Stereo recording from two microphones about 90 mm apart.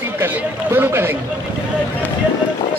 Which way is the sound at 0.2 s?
25° right (ahead or behind).